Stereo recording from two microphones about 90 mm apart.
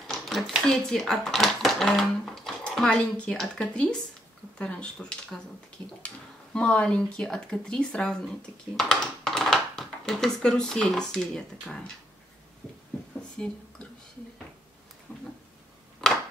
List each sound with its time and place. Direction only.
0.0 s speech: centre (ahead or behind)
13.4 s speech: 10° left (ahead or behind)
15.1 s a sound: 20° left (ahead or behind)